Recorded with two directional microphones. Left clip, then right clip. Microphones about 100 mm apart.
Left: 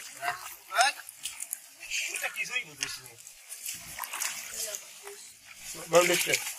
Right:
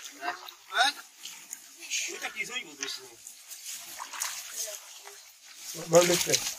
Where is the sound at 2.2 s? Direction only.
35° right (ahead or behind).